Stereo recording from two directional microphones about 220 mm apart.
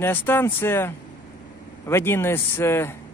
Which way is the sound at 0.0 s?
10° left (ahead or behind).